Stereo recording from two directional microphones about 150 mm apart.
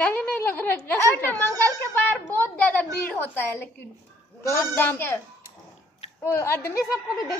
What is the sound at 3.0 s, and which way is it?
A woman's voice, 10° left (ahead or behind).